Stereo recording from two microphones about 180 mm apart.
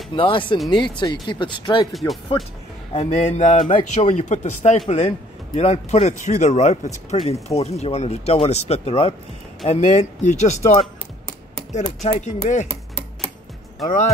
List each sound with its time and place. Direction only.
0.1 s speech: 25° left (ahead or behind)
1.9 s speech: centre (ahead or behind)
2.9 s a man's voice: 40° left (ahead or behind)
12.0 s speech: 40° left (ahead or behind)